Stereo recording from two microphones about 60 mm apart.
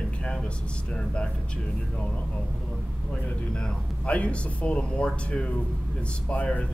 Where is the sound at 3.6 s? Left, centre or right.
Centre.